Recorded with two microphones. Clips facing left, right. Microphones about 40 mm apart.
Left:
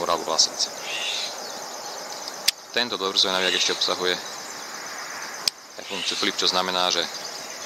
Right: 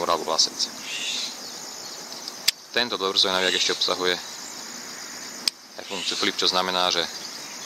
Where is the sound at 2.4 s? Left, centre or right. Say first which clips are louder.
Right 1 dB; centre.